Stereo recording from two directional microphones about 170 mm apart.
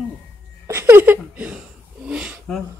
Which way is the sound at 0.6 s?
15° right (ahead or behind).